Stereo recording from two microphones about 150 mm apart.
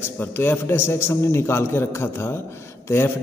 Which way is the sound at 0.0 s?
15° left (ahead or behind).